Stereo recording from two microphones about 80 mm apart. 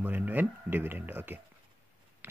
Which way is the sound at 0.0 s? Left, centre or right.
Right.